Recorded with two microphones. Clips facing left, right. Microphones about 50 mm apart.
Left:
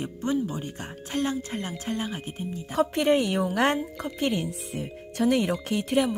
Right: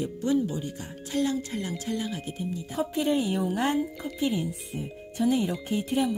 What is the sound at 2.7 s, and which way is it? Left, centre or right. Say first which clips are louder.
Speech: left 4 dB; left.